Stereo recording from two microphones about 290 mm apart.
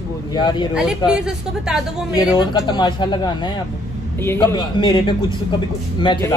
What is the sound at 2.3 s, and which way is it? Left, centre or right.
A man's voice, centre.